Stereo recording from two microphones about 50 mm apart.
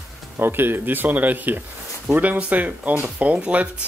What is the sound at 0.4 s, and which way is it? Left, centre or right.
Speech, right.